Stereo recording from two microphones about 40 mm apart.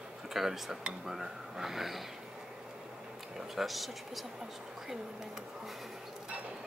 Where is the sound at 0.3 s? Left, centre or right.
Centre.